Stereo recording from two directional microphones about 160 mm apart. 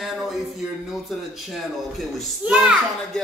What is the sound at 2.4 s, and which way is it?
Speech, 5° right (ahead or behind).